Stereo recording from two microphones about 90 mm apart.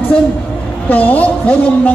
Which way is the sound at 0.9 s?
20° left (ahead or behind).